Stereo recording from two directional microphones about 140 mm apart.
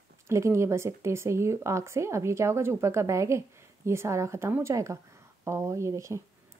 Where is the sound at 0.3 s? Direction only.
20° right (ahead or behind).